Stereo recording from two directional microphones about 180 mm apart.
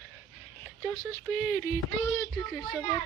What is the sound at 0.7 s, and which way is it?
Speech, 5° left (ahead or behind).